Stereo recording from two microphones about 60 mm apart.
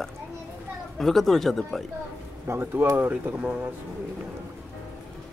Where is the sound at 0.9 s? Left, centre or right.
Centre.